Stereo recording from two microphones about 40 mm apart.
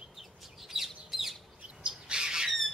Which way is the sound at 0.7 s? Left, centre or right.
Centre.